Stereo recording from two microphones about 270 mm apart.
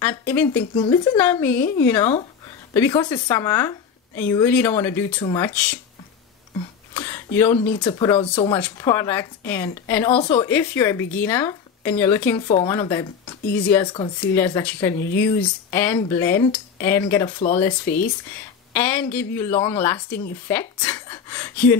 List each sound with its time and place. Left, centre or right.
0.0 s a woman's voice: centre
6.9 s a woman's voice: centre
12.4 s a woman's voice: left
17.8 s speech: left
18.7 s a woman's voice: centre